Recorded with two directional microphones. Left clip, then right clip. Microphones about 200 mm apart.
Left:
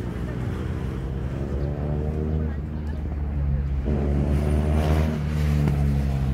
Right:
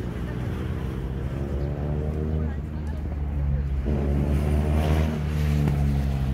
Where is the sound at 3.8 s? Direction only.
45° left (ahead or behind).